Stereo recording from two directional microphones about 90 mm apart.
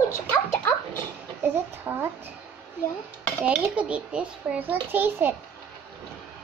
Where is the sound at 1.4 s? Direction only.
25° right (ahead or behind).